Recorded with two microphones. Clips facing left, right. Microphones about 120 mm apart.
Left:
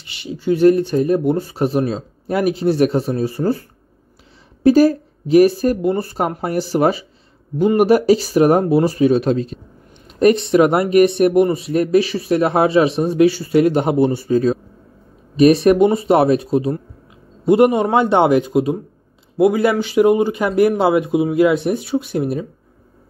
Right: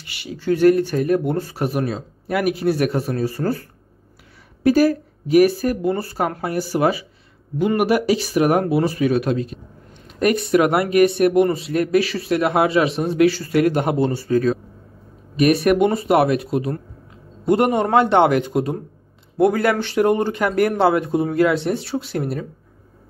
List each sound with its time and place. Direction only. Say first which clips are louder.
0.0 s speech: left 3 dB; 25° left (ahead or behind)
4.6 s speech: left 4 dB; 30° left (ahead or behind)